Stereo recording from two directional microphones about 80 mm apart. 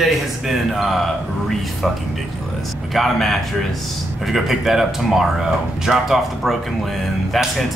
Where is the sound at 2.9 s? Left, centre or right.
Centre.